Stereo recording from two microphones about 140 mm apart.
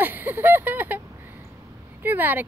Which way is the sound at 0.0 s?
15° right (ahead or behind).